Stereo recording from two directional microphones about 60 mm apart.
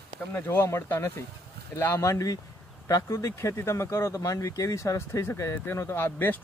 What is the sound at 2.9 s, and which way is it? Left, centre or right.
Speech, left.